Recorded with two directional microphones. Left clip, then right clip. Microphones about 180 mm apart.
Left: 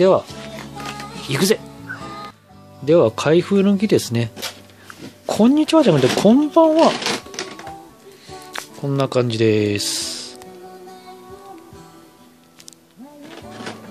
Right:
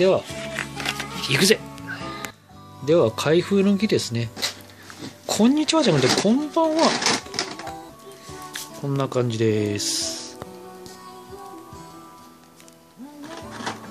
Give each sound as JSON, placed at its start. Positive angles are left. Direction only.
{"t": 1.3, "sound": "speech", "side_deg": 20}
{"t": 2.8, "sound": "speech", "side_deg": 20}
{"t": 5.2, "sound": "speech", "side_deg": 20}
{"t": 8.8, "sound": "speech", "side_deg": 20}